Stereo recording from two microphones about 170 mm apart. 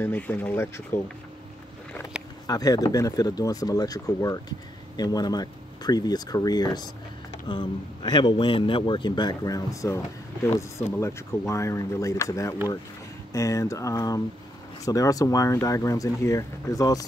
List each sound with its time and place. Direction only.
0.0 s speech: 10° left (ahead or behind)
2.4 s a man's voice: 20° left (ahead or behind)